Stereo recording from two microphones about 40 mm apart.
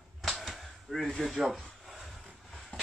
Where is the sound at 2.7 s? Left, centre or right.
Left.